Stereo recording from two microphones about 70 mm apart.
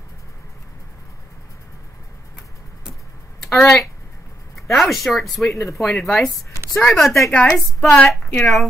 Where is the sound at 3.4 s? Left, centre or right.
Centre.